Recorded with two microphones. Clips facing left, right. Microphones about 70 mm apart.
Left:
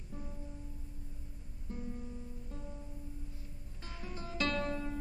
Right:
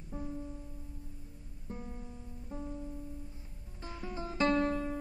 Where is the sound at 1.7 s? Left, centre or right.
Right.